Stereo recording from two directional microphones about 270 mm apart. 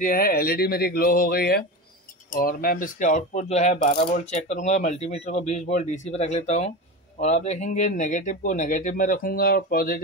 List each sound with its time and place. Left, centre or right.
0.0 s speech: left